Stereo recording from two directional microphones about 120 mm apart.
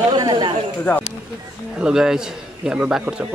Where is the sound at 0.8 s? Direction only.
15° left (ahead or behind).